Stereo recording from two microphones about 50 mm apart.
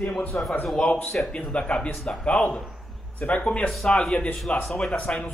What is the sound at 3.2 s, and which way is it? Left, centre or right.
Speech, left.